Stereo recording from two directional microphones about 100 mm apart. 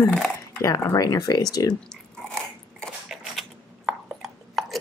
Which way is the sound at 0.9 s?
40° left (ahead or behind).